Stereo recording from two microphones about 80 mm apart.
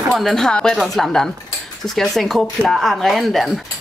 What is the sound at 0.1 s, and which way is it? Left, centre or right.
Speech, centre.